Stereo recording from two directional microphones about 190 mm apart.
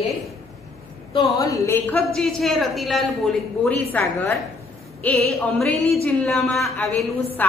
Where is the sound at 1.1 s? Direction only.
15° left (ahead or behind).